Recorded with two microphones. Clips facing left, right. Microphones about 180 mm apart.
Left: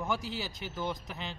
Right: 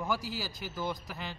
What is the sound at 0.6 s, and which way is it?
Speech, 5° right (ahead or behind).